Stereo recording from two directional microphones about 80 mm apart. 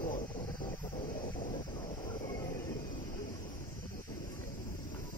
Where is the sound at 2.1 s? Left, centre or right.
Left.